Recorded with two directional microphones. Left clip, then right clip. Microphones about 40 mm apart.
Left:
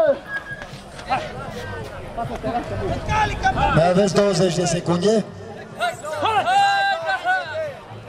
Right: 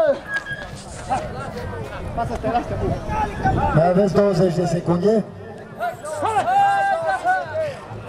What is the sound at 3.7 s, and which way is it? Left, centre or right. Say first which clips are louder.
A man's voice: right 2 dB; right.